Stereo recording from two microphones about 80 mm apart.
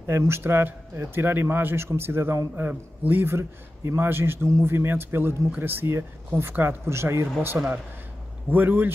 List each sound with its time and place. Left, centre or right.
0.0 s speech: right
8.5 s speech: right